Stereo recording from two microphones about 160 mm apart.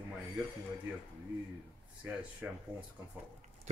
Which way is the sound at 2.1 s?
10° right (ahead or behind).